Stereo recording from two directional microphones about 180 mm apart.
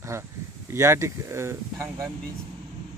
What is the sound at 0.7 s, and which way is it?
A man's voice, 15° right (ahead or behind).